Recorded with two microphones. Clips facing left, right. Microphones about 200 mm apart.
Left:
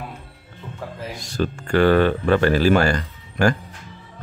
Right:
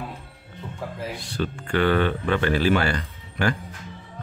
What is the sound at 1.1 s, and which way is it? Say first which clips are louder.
Speech: left 4 dB; 40° left (ahead or behind).